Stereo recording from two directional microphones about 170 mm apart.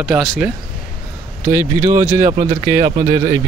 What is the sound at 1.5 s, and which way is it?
Speech, 15° right (ahead or behind).